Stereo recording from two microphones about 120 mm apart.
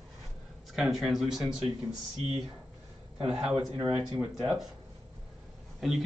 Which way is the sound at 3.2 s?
5° right (ahead or behind).